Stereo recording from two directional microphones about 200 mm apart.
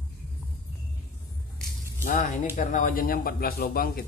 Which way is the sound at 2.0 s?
40° left (ahead or behind).